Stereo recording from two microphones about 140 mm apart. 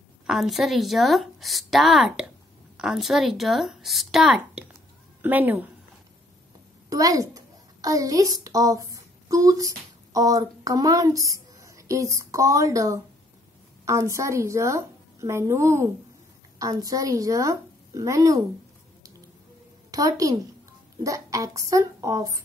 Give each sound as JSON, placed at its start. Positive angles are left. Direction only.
{"t": 0.3, "sound": "a woman's voice", "side_deg": 0}
{"t": 5.2, "sound": "a woman's voice", "side_deg": -15}
{"t": 6.9, "sound": "a child's voice", "side_deg": -25}
{"t": 19.9, "sound": "a woman's voice", "side_deg": -25}